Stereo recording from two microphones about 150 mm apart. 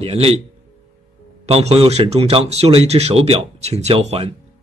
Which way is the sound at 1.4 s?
45° right (ahead or behind).